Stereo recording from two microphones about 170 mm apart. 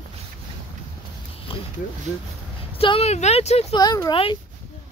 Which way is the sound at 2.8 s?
35° left (ahead or behind).